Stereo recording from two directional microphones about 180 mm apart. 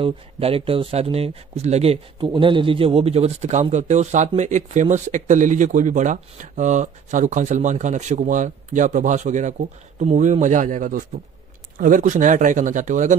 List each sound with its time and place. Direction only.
0.0 s speech: 30° right (ahead or behind)